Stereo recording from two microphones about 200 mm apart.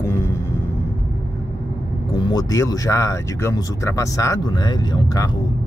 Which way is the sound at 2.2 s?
20° left (ahead or behind).